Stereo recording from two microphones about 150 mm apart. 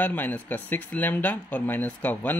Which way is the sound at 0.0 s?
10° left (ahead or behind).